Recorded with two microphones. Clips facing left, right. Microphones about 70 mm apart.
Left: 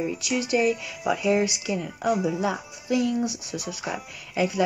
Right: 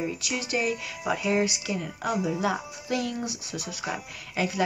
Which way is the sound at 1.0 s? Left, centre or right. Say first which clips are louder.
Left 3 dB; right.